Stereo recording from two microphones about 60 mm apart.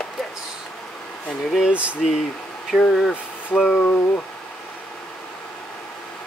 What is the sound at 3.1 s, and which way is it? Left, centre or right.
Speech, left.